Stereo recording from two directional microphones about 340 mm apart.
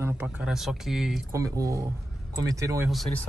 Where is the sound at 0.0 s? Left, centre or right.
Centre.